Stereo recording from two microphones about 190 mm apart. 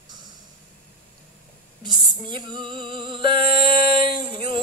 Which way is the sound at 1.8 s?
25° right (ahead or behind).